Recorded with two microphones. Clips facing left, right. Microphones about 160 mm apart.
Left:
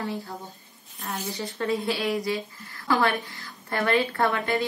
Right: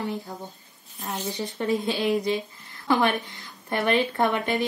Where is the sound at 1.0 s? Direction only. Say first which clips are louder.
Right 2 dB; 20° right (ahead or behind).